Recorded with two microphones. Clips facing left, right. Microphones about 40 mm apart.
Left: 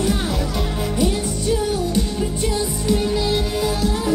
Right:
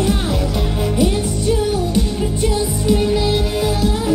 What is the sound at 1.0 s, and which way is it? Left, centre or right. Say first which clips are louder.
Music: right 3 dB; centre.